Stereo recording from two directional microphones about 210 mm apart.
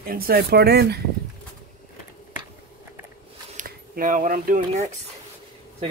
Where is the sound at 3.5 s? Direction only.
40° right (ahead or behind).